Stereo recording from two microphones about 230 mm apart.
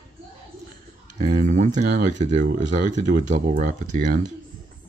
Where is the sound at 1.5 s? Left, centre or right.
Right.